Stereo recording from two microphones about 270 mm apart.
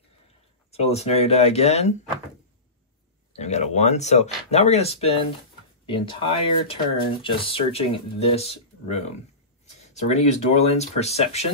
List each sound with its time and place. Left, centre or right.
0.7 s speech: left
3.3 s speech: left